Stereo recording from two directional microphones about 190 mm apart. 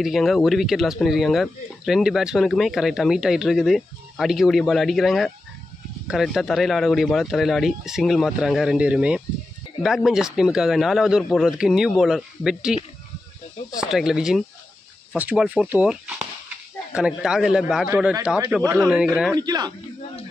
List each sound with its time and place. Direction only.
0.0 s speech: centre (ahead or behind)
13.7 s speech: 5° right (ahead or behind)
19.3 s a man's voice: 20° right (ahead or behind)